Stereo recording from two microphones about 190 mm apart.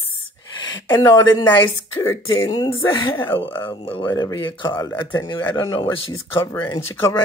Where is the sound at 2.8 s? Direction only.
15° left (ahead or behind).